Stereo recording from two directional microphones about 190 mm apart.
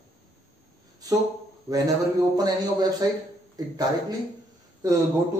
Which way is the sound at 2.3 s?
20° right (ahead or behind).